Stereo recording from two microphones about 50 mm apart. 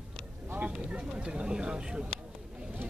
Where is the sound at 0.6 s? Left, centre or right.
Centre.